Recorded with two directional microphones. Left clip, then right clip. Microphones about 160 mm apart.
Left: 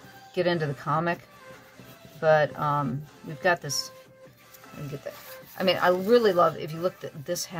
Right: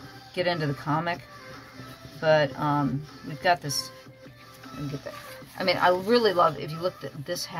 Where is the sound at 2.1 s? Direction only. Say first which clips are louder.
Left 1 dB; 40° left (ahead or behind).